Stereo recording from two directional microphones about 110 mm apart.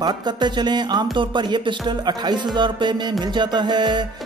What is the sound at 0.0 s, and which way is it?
Music, 40° right (ahead or behind).